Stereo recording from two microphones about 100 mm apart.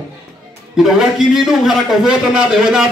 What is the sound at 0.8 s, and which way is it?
A man's voice, 5° right (ahead or behind).